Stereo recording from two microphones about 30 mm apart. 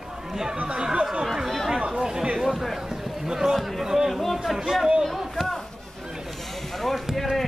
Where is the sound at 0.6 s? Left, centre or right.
Right.